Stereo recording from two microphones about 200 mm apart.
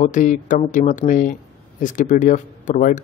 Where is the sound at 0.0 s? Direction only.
40° left (ahead or behind).